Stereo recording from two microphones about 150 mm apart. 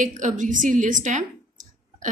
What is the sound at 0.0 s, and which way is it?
A woman's voice, 60° right (ahead or behind).